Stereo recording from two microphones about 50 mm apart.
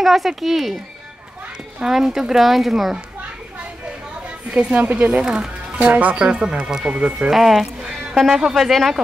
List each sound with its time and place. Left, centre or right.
0.0 s speech: centre
1.8 s speech: centre
4.6 s speech: centre
5.7 s speech: right
7.2 s speech: centre